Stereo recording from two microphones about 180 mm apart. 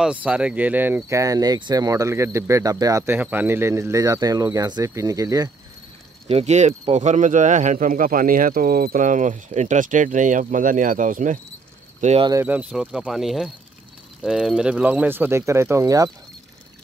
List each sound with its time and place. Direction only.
0.0 s speech: 5° right (ahead or behind)
6.2 s speech: 35° right (ahead or behind)
12.3 s speech: 10° right (ahead or behind)